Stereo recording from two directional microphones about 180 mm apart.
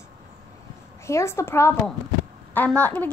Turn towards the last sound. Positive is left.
turn(degrees=10)  # may be behind; listen again after turning